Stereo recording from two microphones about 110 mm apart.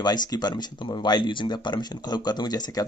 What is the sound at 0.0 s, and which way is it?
Speech, 40° left (ahead or behind).